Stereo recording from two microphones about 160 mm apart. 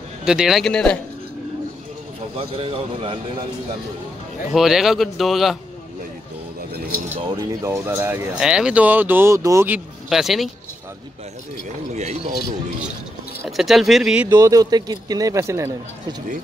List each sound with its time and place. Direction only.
0.2 s speech: 5° right (ahead or behind)
2.3 s a man's voice: 35° right (ahead or behind)
4.5 s speech: centre (ahead or behind)
7.6 s speech: 15° right (ahead or behind)
10.0 s speech: centre (ahead or behind)
11.9 s speech: 45° right (ahead or behind)
13.5 s speech: centre (ahead or behind)
14.3 s a man's voice: 20° right (ahead or behind)